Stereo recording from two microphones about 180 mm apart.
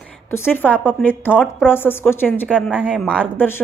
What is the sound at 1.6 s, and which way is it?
A woman's voice, 10° left (ahead or behind).